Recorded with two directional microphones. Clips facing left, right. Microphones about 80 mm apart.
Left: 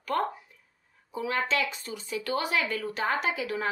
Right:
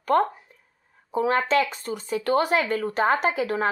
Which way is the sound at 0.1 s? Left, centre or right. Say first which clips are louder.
Right 7 dB; right.